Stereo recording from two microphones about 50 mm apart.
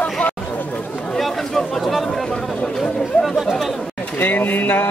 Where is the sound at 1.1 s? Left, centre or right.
Centre.